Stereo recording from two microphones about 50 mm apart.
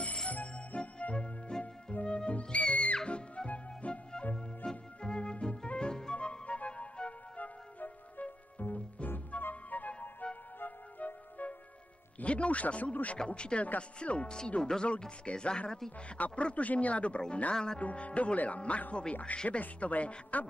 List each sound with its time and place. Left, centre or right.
0.0 s music: left
12.2 s speech: left
17.5 s speech: centre
17.7 s a woman's voice: left